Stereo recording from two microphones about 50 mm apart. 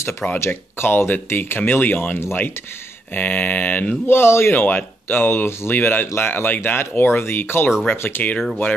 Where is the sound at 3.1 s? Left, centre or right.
Left.